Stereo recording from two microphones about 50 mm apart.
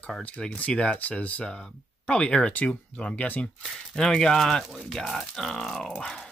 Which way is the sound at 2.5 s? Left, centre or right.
Left.